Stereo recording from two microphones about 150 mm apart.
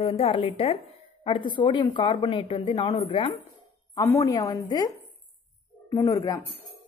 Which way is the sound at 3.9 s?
20° left (ahead or behind).